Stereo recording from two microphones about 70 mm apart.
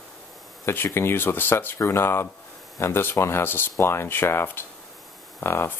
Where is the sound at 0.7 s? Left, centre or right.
Left.